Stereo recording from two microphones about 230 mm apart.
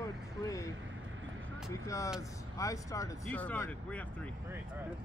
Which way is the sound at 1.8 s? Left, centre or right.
Centre.